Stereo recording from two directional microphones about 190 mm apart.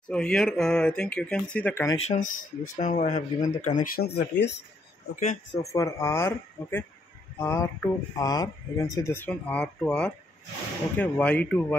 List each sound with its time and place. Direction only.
0.1 s speech: 5° left (ahead or behind)
2.0 s speech: 40° left (ahead or behind); by 4.5 s 55° left (ahead or behind)
5.1 s speech: 40° left (ahead or behind)
5.5 s speech: 15° left (ahead or behind)